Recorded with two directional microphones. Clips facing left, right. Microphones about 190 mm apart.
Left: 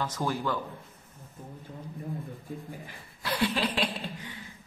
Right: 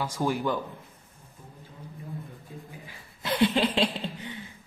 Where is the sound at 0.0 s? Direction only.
15° right (ahead or behind).